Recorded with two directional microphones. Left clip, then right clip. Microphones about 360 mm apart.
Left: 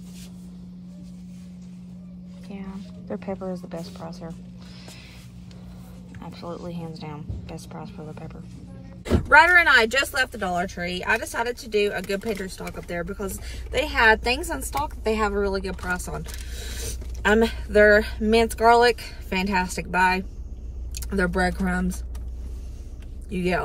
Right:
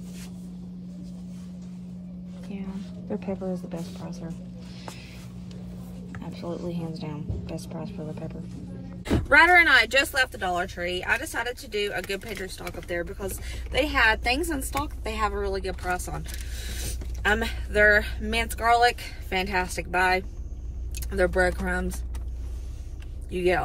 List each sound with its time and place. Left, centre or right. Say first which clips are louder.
2.4 s music: even; centre
6.2 s music: even; centre
6.7 s speech: right 1 dB; centre
9.3 s speech: left 2 dB; centre